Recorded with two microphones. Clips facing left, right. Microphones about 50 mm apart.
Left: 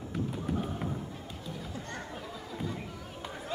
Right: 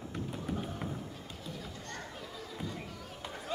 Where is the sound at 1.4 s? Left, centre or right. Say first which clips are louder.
Left 3 dB; centre.